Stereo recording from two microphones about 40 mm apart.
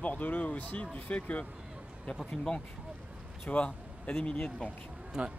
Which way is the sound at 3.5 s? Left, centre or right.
Left.